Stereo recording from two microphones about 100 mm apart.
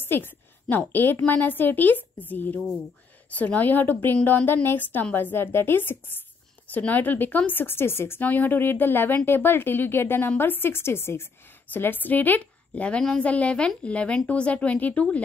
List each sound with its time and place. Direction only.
0.0 s a woman's voice: 20° left (ahead or behind)